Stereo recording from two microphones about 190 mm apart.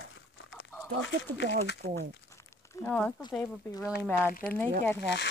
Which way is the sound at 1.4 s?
70° left (ahead or behind).